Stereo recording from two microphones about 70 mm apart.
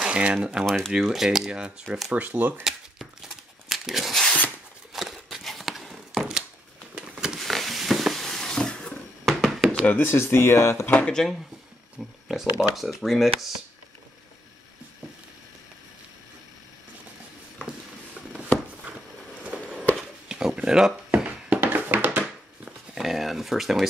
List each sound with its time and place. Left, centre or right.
0.0 s speech: centre
0.7 s speech: centre
2.1 s speech: right
2.6 s tearing: centre
4.9 s a sound: centre
7.3 s a sound: centre
9.8 s speech: left
10.9 s speech: left
12.0 s speech: centre
20.2 s a sound: centre
21.2 s music: centre
21.5 s music: right
22.9 s a sound: centre